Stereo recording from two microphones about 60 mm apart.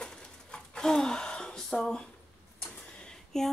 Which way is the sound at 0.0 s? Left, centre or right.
Centre.